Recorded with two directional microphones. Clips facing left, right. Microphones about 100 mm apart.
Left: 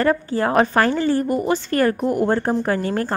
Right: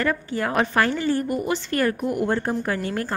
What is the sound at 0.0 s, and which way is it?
Speech, 35° left (ahead or behind).